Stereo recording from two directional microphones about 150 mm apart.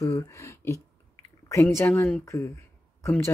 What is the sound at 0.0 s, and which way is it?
Speech, 20° left (ahead or behind).